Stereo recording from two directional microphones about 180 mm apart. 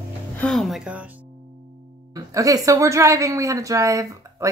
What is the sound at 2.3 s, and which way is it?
Speech, 20° right (ahead or behind).